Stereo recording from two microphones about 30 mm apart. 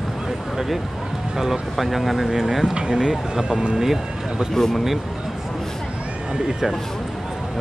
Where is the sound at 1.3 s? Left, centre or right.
Centre.